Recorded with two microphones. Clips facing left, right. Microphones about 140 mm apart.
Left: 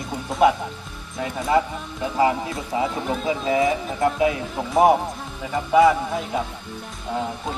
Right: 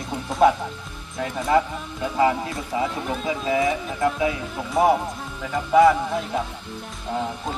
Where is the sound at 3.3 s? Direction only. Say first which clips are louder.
Left 2 dB; 25° left (ahead or behind).